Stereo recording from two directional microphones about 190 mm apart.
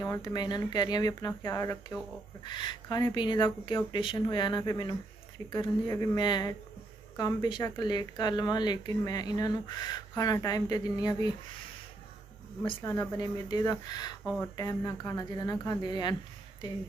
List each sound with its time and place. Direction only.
0.0 s speech: 20° left (ahead or behind)
12.6 s speech: 20° left (ahead or behind)